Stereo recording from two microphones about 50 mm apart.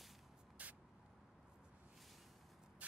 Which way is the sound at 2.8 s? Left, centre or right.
Right.